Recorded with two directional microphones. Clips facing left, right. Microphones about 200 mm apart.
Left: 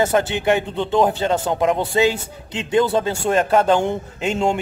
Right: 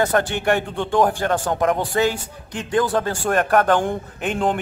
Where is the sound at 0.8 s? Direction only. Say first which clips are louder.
Left 1 dB; 20° left (ahead or behind).